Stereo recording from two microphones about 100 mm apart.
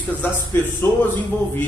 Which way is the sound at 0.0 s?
20° left (ahead or behind).